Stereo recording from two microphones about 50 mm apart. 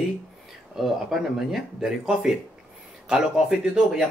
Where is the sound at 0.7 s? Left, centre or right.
Centre.